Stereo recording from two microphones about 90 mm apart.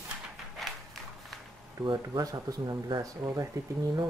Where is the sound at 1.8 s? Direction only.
55° right (ahead or behind).